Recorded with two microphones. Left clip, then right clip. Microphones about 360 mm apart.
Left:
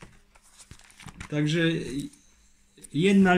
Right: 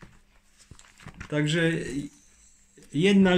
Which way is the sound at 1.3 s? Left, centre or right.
Centre.